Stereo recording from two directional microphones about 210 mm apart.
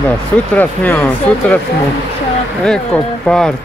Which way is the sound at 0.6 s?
5° left (ahead or behind).